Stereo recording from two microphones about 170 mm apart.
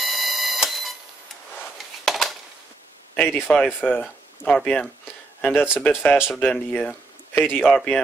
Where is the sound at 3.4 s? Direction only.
Centre (ahead or behind).